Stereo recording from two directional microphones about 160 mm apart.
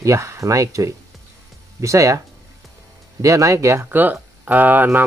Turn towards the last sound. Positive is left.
turn(degrees=-10)  # may be behind; listen again after turning